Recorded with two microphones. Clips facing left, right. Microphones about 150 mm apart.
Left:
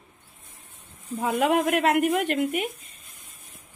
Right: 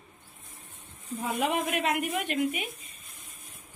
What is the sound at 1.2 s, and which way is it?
A woman's voice, 85° left.